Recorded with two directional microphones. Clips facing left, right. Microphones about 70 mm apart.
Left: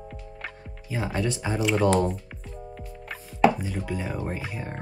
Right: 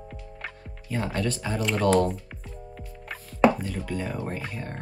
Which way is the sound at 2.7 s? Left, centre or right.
Centre.